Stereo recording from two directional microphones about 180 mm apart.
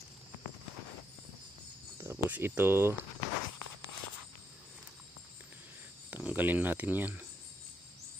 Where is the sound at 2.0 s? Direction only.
10° right (ahead or behind).